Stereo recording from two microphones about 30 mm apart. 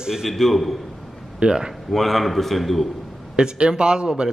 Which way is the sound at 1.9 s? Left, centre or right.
Centre.